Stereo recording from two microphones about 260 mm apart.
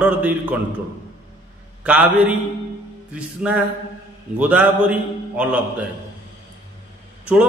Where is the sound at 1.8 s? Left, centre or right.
Centre.